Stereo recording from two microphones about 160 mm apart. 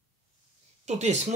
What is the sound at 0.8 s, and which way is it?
Speech, 45° right (ahead or behind).